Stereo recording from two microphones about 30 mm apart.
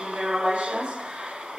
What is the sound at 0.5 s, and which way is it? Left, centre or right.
Speech, right.